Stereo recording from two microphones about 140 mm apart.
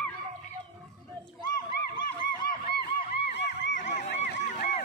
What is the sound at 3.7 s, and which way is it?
Crowd, 60° left (ahead or behind).